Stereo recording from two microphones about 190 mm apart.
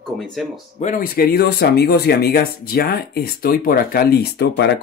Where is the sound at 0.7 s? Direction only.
45° left (ahead or behind).